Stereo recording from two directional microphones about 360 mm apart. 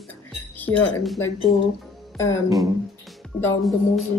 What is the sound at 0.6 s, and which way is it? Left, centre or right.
Speech, centre.